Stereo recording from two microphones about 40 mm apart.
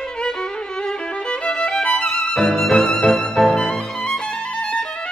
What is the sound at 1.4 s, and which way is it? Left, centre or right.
Music, left.